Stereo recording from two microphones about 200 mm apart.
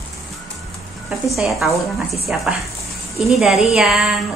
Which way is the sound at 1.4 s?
Centre (ahead or behind).